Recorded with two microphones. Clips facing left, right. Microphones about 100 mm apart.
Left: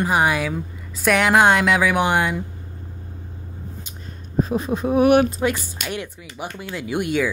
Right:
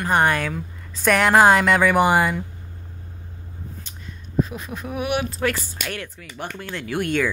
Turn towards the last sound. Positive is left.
turn(degrees=10)  # may be behind; listen again after turning